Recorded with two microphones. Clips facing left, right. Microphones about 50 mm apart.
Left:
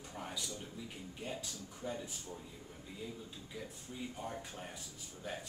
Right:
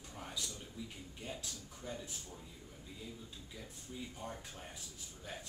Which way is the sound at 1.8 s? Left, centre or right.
Centre.